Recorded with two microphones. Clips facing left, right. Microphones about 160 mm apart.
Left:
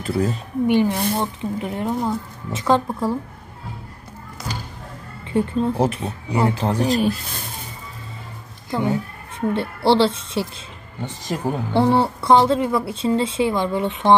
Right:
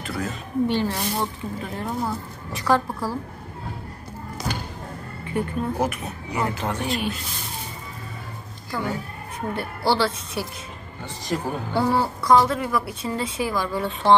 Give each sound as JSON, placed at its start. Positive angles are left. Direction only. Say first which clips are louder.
{"t": 0.0, "sound": "speech", "louder": "left 7 dB", "side_deg": 30}
{"t": 0.7, "sound": "a woman's voice", "louder": "left 6 dB", "side_deg": 15}
{"t": 5.2, "sound": "speech", "louder": "left 6 dB", "side_deg": 25}
{"t": 8.6, "sound": "speech", "louder": "left 6 dB", "side_deg": 20}